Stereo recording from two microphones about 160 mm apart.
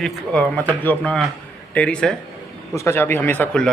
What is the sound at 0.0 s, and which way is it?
A man's voice, 10° left (ahead or behind).